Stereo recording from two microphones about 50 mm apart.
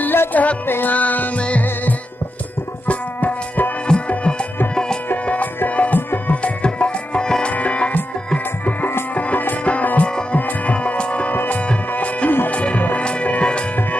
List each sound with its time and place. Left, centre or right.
0.0 s music: left
0.3 s music: left
0.7 s music: left
0.9 s music: left
4.1 s music: left
5.8 s tabla: left; by 7.5 s centre
7.5 s music: left
9.1 s music: left
11.3 s music: left